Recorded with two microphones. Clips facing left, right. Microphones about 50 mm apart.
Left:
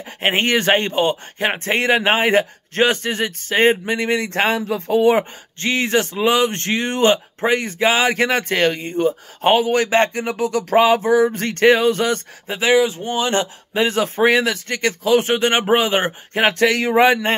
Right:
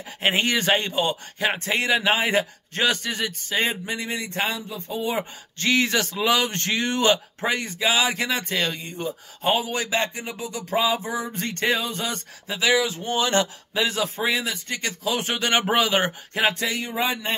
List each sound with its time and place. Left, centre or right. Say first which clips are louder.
0.0 s speech: left 4 dB; left
5.6 s speech: left 3 dB; left
12.4 s speech: left 6 dB; left
16.4 s speech: left 9 dB; left